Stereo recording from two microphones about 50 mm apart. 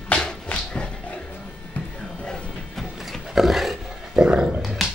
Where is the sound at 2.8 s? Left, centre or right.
Centre.